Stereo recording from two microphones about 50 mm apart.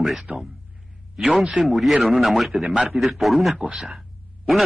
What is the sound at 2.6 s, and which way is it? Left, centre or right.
Speech, right.